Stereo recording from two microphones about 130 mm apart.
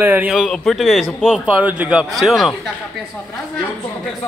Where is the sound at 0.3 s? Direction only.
Centre (ahead or behind).